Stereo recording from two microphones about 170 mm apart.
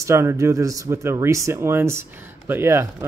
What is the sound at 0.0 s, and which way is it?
Speech, 15° right (ahead or behind).